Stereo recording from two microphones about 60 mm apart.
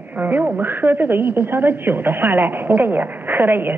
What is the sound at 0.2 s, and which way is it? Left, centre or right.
A woman's voice, right.